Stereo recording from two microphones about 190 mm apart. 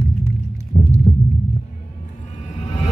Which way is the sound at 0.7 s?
40° left (ahead or behind).